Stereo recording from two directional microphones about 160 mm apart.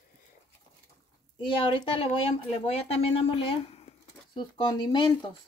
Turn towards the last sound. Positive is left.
turn(degrees=30)  # may be behind; listen again after turning